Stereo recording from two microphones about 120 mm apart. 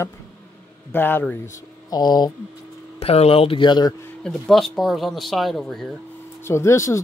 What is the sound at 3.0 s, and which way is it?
Speech, 55° left (ahead or behind).